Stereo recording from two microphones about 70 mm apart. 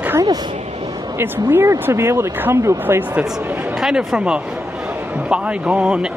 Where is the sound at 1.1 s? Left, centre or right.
Right.